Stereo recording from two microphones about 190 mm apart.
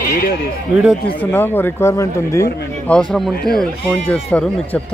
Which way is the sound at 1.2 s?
10° left (ahead or behind).